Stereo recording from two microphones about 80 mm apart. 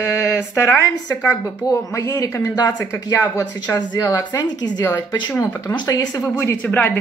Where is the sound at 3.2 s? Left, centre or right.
Left.